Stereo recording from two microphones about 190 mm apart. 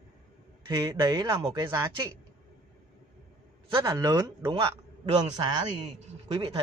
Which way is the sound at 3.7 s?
20° right (ahead or behind).